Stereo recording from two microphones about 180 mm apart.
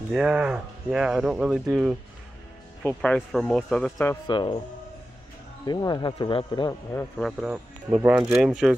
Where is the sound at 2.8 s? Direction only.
5° left (ahead or behind).